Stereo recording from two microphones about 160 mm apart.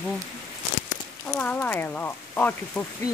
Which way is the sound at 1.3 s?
15° left (ahead or behind).